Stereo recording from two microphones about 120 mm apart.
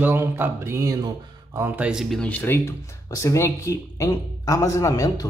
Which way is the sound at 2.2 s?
15° left (ahead or behind).